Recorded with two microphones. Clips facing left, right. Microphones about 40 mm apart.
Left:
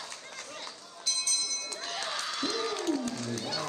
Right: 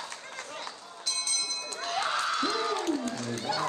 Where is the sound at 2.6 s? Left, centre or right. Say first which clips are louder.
Right 2 dB; right.